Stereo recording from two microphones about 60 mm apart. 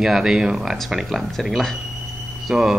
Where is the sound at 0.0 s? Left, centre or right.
Centre.